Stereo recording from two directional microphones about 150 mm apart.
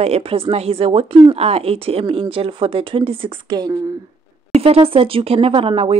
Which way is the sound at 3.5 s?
25° right (ahead or behind).